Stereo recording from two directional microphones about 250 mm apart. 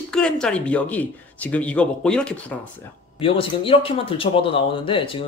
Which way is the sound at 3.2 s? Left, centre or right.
Left.